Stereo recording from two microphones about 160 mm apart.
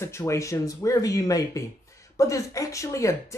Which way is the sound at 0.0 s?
15° left (ahead or behind).